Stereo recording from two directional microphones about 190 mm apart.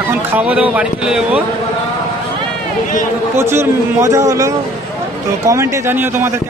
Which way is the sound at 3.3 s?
15° right (ahead or behind).